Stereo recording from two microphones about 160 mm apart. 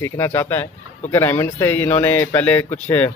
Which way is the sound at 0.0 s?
15° left (ahead or behind).